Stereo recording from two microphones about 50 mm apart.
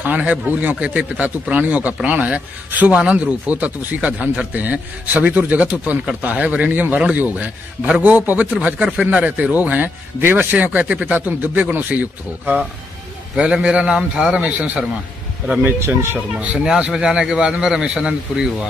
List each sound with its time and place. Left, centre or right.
0.0 s speech: right
8.5 s speech: right
13.4 s speech: right
13.9 s a man's voice: centre
14.3 s speech: right
16.5 s a man's voice: centre